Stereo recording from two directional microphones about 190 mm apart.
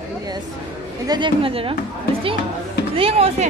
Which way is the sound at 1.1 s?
25° right (ahead or behind).